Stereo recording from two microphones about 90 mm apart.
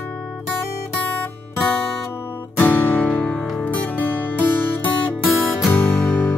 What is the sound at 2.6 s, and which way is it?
Music, 20° left (ahead or behind).